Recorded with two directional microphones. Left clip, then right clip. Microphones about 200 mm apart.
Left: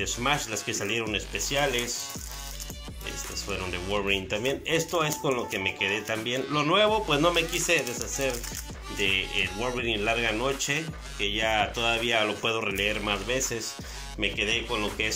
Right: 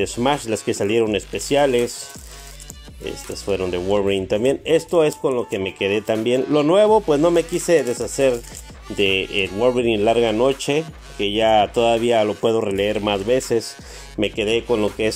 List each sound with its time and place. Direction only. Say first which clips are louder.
0.0 s speech: right 7 dB; 40° right (ahead or behind)
3.3 s speech: right 12 dB; 40° right (ahead or behind)